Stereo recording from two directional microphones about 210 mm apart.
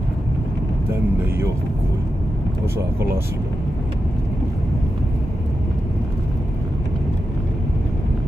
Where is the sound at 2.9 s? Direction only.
10° right (ahead or behind).